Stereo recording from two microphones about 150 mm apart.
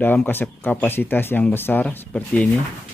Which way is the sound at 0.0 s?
15° left (ahead or behind).